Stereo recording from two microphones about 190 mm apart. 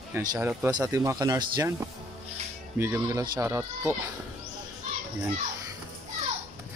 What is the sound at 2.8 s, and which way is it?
Speech, 15° right (ahead or behind).